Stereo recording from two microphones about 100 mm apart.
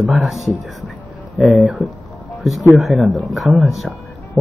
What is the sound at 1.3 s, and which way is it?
Speech, 5° right (ahead or behind).